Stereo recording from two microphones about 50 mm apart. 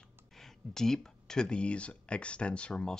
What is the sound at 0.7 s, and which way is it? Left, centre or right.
Speech, centre.